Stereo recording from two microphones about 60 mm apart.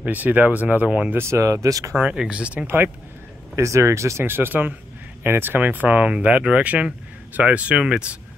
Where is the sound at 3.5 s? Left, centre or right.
Right.